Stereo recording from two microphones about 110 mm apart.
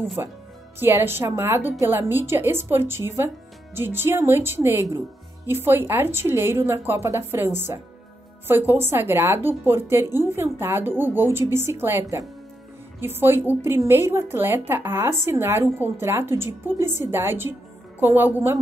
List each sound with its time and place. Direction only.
0.2 s a woman's voice: 25° right (ahead or behind)